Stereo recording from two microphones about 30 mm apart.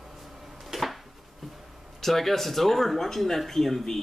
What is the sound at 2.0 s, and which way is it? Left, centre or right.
Speech, centre.